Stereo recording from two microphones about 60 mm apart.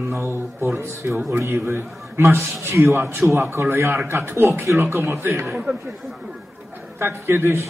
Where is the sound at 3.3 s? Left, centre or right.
Right.